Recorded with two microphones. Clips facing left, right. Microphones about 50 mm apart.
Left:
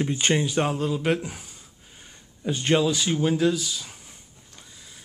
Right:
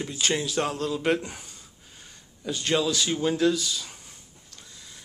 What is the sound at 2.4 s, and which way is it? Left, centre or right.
Speech, left.